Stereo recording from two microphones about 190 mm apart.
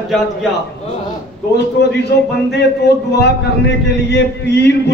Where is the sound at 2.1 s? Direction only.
60° left (ahead or behind).